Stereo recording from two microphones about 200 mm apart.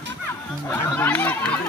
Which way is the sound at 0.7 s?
10° left (ahead or behind).